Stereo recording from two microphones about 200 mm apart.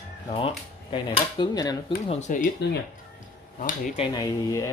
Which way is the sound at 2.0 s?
35° left (ahead or behind).